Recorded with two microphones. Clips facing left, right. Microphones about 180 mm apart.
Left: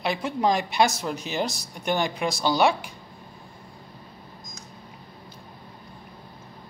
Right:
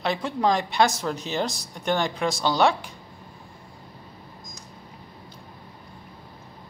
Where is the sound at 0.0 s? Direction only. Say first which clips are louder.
Even; 15° left (ahead or behind).